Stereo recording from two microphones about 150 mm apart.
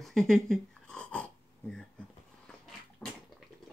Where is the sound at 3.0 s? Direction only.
10° left (ahead or behind).